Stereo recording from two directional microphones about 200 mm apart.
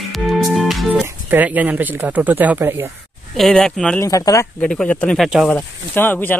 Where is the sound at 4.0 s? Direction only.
15° left (ahead or behind).